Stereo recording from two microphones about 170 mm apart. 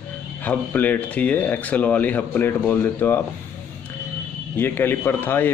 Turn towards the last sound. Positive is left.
turn(degrees=10)  # may be behind; listen again after turning